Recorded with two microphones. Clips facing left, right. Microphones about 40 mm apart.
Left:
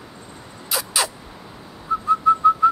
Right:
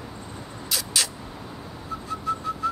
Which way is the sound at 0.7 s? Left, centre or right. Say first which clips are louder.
Left 4 dB; centre.